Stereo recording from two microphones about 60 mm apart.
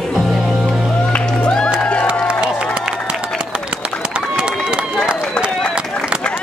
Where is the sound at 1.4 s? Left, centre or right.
Centre.